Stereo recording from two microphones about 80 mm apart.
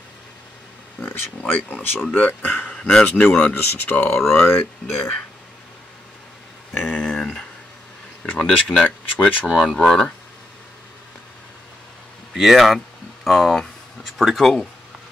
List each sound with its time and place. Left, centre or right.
1.5 s speech: left
2.7 s speech: centre; by 4.6 s left
6.7 s a sound: centre
8.2 s speech: centre
12.4 s speech: centre